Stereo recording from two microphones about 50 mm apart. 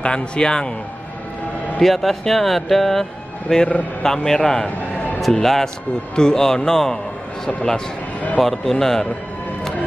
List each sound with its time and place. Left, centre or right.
0.0 s a man's voice: centre
1.8 s a man's voice: centre
4.6 s music: left
5.2 s a man's voice: centre